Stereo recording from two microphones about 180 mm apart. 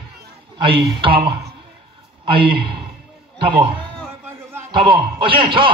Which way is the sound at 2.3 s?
30° right (ahead or behind).